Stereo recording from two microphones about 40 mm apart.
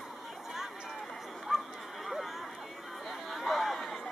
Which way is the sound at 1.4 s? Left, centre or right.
Centre.